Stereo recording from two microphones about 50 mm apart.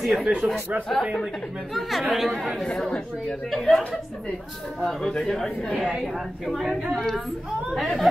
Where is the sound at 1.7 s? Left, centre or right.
Centre.